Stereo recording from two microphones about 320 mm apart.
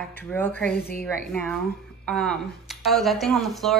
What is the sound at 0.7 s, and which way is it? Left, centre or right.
Speech, left.